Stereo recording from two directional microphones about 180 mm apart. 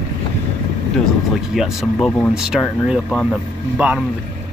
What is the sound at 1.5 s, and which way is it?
Speech, centre (ahead or behind).